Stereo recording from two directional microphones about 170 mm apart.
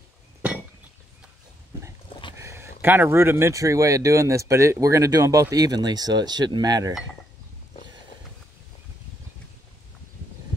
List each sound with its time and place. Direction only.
2.3 s speech: 15° right (ahead or behind)